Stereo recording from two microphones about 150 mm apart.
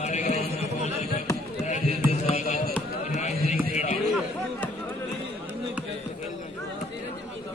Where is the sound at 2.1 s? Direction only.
50° left (ahead or behind).